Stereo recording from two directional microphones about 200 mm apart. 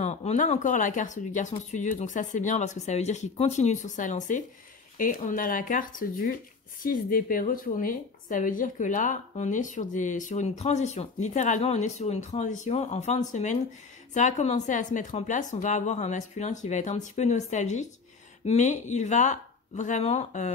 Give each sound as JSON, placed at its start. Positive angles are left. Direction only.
{"t": 0.0, "sound": "a woman's voice", "side_deg": 35}